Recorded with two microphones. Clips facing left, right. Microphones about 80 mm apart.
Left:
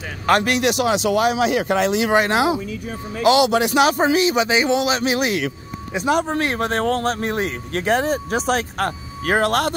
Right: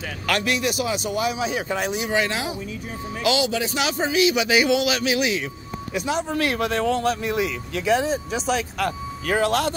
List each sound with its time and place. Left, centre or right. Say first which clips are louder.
0.3 s speech: left 6 dB; left
0.6 s speech: left 6 dB; left
2.1 s speech: left 7 dB; left
6.3 s speech: left 2 dB; left